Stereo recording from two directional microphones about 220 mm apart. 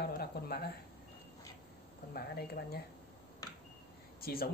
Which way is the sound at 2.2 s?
45° left (ahead or behind).